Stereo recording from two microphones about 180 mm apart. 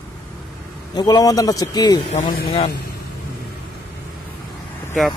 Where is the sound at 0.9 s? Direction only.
20° left (ahead or behind).